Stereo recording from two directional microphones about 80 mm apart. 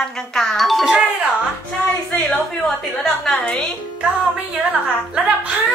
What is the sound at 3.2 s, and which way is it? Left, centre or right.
Speech, centre.